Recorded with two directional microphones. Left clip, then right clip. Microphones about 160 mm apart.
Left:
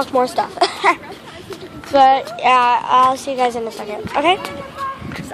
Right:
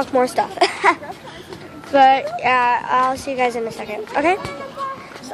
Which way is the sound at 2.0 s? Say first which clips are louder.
Left 1 dB; 10° right (ahead or behind).